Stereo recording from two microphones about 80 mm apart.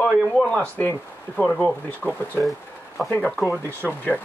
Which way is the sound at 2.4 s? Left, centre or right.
Centre.